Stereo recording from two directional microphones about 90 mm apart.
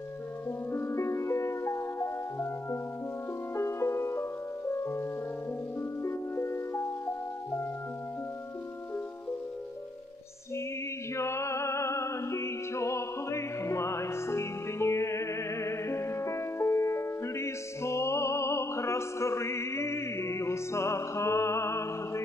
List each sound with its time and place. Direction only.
0.7 s music: 30° left (ahead or behind)
11.1 s music: 30° left (ahead or behind)